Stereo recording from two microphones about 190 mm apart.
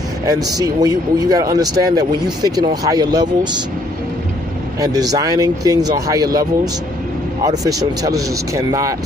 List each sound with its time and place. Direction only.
0.3 s speech: 20° right (ahead or behind)
4.7 s speech: 20° right (ahead or behind)